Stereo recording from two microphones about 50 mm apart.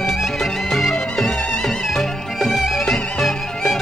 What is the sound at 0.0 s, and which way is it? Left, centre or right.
Music, centre.